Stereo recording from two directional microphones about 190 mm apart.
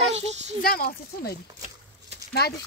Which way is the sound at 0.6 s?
50° left (ahead or behind).